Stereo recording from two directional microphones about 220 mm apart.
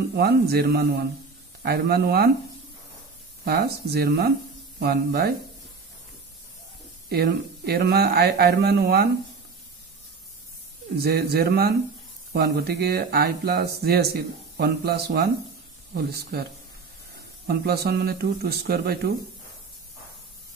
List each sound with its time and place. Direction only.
0.1 s speech: 45° right (ahead or behind)
3.4 s speech: 45° right (ahead or behind)
7.1 s speech: 45° right (ahead or behind)
11.0 s speech: 45° right (ahead or behind)
17.5 s speech: 45° right (ahead or behind)